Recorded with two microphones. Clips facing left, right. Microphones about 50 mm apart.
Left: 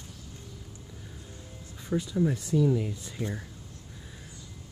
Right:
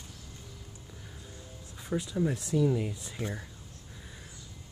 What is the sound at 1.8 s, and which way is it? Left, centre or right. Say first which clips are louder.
Speech: left 3 dB; centre.